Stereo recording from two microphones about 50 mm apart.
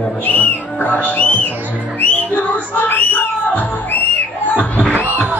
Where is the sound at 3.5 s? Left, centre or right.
Left.